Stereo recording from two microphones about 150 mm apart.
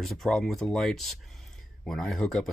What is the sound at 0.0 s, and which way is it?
Speech, centre (ahead or behind).